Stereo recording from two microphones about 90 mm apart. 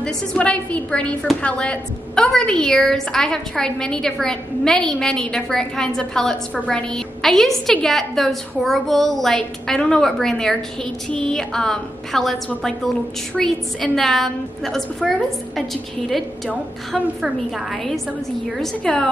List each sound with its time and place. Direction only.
0.0 s a woman's voice: 15° left (ahead or behind)
13.4 s a woman's voice: 5° left (ahead or behind)
18.6 s a woman's voice: 5° left (ahead or behind)